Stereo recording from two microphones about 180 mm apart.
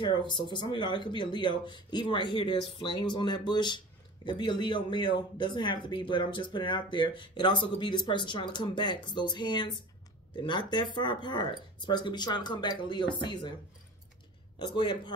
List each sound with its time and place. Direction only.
0.0 s speech: 25° left (ahead or behind)
14.6 s speech: 25° left (ahead or behind)